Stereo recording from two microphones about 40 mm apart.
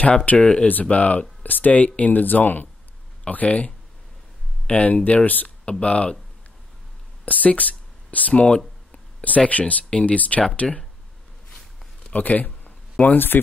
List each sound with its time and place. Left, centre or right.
0.4 s speech: centre
0.7 s speech: left
1.4 s speech: left
3.3 s speech: left
5.7 s speech: left
7.2 s speech: left
12.1 s speech: left